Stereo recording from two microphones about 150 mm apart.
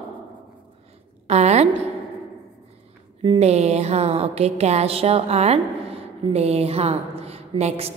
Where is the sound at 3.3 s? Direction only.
45° right (ahead or behind).